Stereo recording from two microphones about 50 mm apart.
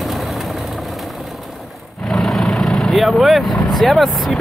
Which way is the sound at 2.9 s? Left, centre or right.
Centre.